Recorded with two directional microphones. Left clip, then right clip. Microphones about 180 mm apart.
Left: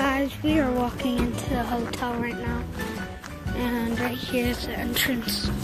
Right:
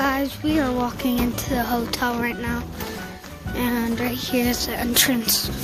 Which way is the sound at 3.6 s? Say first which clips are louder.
Right 3 dB; 20° right (ahead or behind).